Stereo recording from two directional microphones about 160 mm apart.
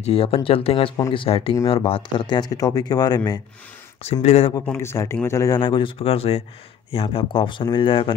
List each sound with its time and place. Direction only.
0.0 s speech: 35° left (ahead or behind)
4.0 s speech: 40° left (ahead or behind)
4.6 s speech: 15° left (ahead or behind); by 8.2 s 30° left (ahead or behind)